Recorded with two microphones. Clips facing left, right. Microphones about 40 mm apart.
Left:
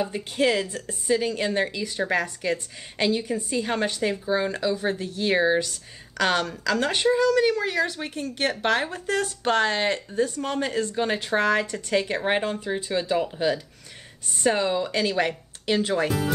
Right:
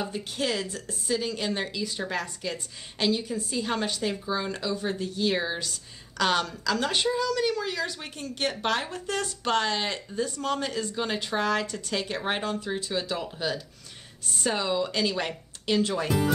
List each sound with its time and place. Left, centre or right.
0.1 s speech: left
1.9 s a woman's voice: left
4.3 s a woman's voice: left
7.4 s speech: left
10.2 s a woman's voice: left